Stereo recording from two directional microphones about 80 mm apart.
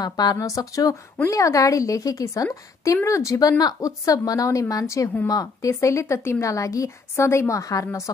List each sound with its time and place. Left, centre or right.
0.0 s a woman's voice: left